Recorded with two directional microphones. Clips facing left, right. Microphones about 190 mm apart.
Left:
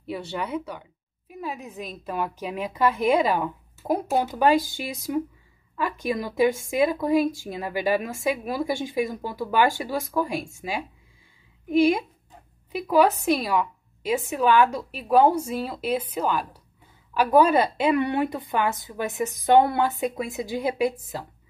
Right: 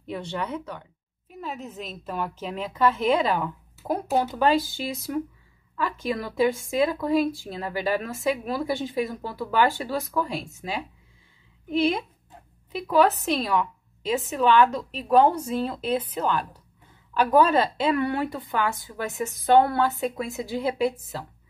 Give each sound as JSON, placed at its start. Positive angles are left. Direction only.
{"t": 0.0, "sound": "speech", "side_deg": 5}